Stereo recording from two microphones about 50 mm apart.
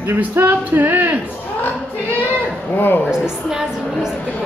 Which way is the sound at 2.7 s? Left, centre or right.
Left.